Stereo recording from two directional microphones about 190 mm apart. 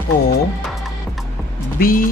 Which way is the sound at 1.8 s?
50° left (ahead or behind).